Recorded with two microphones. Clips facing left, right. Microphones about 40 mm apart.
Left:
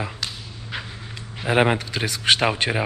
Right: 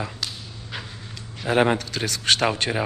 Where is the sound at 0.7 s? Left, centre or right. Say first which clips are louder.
Left 3 dB; centre.